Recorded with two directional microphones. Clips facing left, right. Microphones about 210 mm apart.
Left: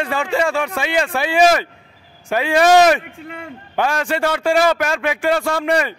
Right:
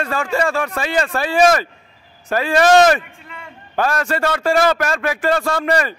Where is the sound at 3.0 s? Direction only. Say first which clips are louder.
Left 7 dB; 65° left (ahead or behind).